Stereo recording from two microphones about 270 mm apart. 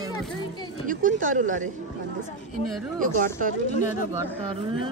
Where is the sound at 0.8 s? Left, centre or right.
Right.